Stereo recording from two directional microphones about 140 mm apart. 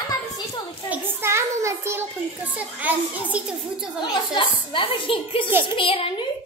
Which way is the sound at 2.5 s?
10° right (ahead or behind).